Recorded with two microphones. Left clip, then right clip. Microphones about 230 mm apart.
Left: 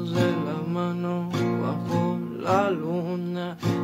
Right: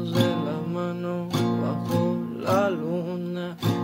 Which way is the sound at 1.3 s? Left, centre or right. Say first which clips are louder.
Right 1 dB; right.